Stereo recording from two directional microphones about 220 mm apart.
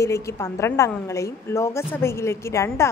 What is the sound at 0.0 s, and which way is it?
A woman's voice, 15° left (ahead or behind).